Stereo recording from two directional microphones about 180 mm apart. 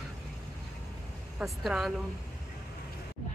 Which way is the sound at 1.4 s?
Centre (ahead or behind).